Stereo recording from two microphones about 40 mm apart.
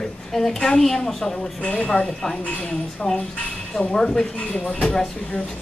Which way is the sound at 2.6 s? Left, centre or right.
Left.